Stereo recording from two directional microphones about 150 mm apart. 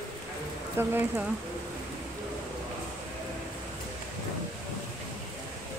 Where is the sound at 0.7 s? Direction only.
15° right (ahead or behind).